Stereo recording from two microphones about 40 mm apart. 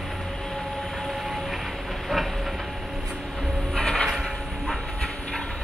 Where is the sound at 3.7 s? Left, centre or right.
Centre.